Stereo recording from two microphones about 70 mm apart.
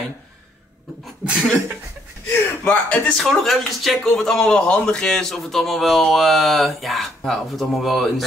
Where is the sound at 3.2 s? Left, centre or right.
Centre.